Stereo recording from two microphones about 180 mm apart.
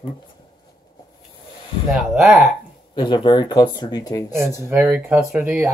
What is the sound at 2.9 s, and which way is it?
Speech, 25° left (ahead or behind).